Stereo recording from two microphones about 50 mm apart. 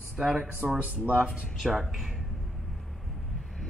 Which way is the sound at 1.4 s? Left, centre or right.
Centre.